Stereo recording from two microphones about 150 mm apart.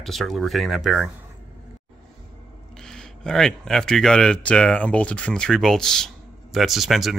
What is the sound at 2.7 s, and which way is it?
Speech, 5° left (ahead or behind).